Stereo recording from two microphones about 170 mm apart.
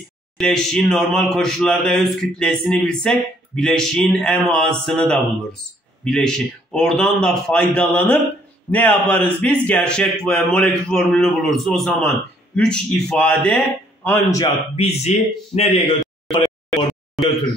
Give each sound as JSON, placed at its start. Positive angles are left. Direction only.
{"t": 0.4, "sound": "speech", "side_deg": 5}
{"t": 14.0, "sound": "a man's voice", "side_deg": 15}
{"t": 14.8, "sound": "a man's voice", "side_deg": 40}